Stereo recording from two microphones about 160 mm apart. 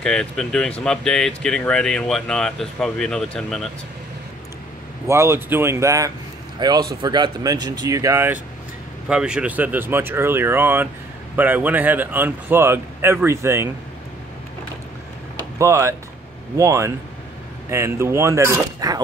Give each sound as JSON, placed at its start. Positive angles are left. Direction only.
{"t": 0.0, "sound": "speech", "side_deg": 5}
{"t": 5.0, "sound": "speech", "side_deg": -15}
{"t": 9.1, "sound": "speech", "side_deg": -5}
{"t": 15.3, "sound": "a sound", "side_deg": -20}
{"t": 16.5, "sound": "speech", "side_deg": -20}